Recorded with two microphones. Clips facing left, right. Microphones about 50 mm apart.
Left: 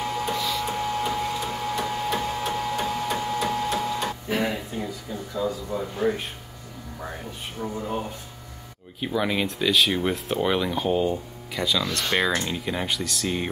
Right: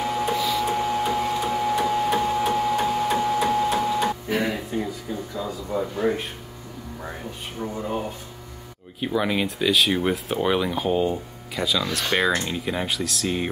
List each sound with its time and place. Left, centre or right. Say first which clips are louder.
0.0 s printer: right 3 dB; centre
4.3 s speech: right 1 dB; centre
5.1 s a sound: right 3 dB; centre
5.7 s speech: right 6 dB; centre
7.6 s speech: right 1 dB; centre
9.0 s speech: right 1 dB; centre